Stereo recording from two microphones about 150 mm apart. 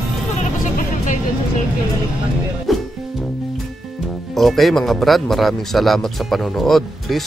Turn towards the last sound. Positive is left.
turn(degrees=0)  # may be behind; listen again after turning